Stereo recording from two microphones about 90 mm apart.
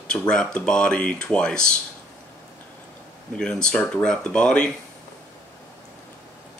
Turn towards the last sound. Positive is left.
turn(degrees=10)  # may be behind; listen again after turning